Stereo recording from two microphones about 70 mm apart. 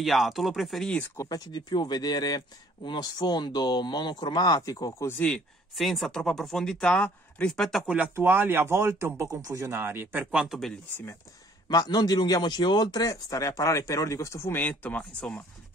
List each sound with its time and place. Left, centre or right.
0.0 s speech: centre
1.1 s speech: left
1.5 s speech: left
5.8 s speech: centre
7.8 s speech: centre
8.2 s speech: right
11.7 s a man's voice: left
14.5 s speech: left